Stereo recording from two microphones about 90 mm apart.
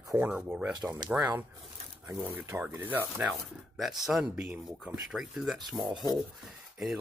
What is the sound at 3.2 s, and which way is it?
Speech, centre (ahead or behind).